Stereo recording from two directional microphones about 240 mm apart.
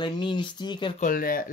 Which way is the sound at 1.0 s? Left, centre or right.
Left.